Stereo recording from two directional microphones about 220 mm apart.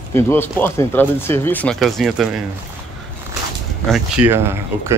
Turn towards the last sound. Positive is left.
turn(degrees=-10)  # may be behind; listen again after turning